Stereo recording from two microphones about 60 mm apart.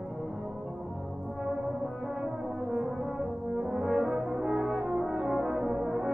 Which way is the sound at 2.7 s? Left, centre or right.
Centre.